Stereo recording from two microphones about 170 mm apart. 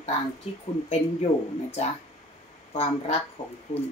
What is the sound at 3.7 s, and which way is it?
Speech, 40° left (ahead or behind).